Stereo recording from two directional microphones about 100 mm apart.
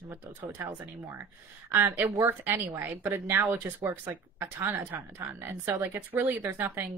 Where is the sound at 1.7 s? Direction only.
20° right (ahead or behind).